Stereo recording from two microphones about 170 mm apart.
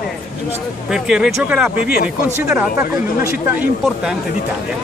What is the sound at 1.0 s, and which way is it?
Speech, 5° right (ahead or behind).